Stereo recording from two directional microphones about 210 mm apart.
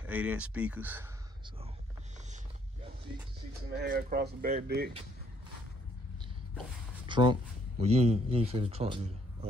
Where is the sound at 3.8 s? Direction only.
50° right (ahead or behind).